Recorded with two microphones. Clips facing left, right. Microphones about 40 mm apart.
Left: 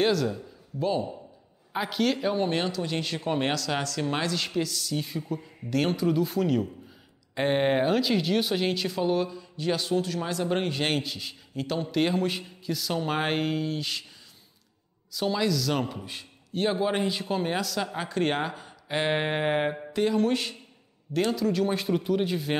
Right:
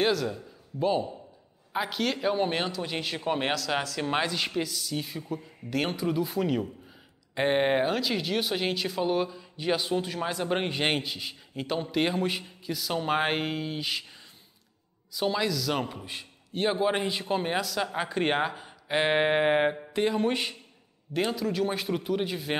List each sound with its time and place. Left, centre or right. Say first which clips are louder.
0.0 s a man's voice: left 2 dB; centre
15.1 s speech: left 1 dB; centre